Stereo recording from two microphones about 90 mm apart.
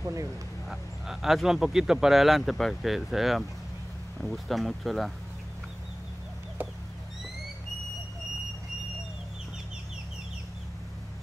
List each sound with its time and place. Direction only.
0.0 s speech: 35° right (ahead or behind)
0.7 s speech: 5° right (ahead or behind)
6.6 s a sound: 20° right (ahead or behind)